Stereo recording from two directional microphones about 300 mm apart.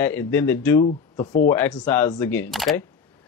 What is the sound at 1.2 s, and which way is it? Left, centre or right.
Speech, left.